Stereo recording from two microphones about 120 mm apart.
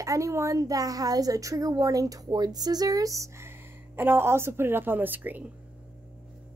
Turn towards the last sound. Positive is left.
turn(degrees=-15)  # may be behind; listen again after turning